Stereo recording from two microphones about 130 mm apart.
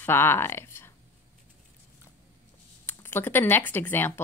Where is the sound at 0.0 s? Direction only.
15° left (ahead or behind).